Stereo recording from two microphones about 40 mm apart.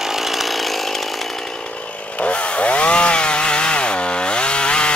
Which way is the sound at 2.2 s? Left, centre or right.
Left.